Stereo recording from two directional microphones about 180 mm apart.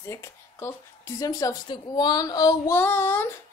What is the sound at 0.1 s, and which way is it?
A woman's voice, 15° left (ahead or behind).